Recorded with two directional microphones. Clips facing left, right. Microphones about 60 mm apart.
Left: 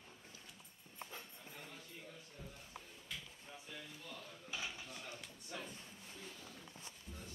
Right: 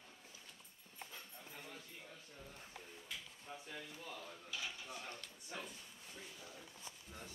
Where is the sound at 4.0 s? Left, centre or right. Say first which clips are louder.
Right 2 dB; centre.